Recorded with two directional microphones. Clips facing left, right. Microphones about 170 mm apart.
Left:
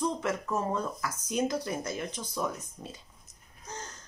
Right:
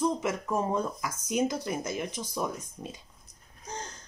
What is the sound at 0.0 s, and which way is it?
Speech, 10° right (ahead or behind).